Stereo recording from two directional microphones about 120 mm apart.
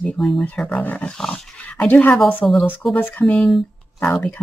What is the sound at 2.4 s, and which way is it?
Speech, centre (ahead or behind).